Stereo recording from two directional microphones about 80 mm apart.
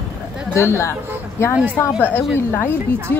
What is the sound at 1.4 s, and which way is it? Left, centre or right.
Speech, left.